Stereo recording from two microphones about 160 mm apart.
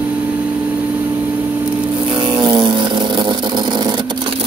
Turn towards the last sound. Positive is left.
turn(degrees=-30)  # may be behind; listen again after turning